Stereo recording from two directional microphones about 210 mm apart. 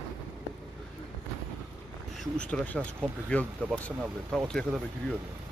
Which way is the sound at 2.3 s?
5° left (ahead or behind).